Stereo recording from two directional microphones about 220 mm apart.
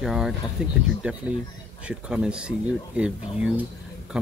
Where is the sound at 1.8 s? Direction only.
5° right (ahead or behind).